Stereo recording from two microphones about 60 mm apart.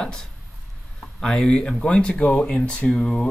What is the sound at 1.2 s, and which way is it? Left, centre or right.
Speech, centre.